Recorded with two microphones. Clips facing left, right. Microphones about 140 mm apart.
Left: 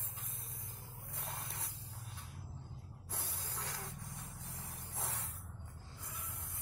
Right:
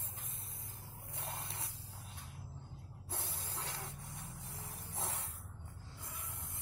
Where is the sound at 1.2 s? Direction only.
25° right (ahead or behind).